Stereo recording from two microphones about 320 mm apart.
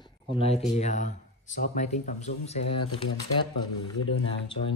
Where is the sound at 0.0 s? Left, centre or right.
Centre.